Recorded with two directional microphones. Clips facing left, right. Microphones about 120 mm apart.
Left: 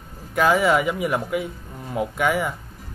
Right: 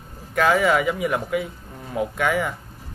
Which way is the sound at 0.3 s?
5° left (ahead or behind).